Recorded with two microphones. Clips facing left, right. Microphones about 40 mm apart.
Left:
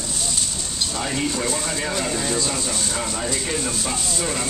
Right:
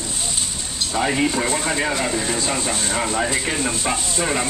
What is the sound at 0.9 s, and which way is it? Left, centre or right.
Speech, right.